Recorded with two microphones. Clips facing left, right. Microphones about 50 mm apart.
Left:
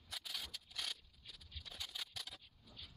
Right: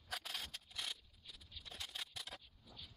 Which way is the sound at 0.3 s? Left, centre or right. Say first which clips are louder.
Right 1 dB; right.